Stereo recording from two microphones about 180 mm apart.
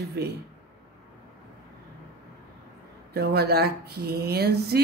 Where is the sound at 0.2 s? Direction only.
65° right (ahead or behind).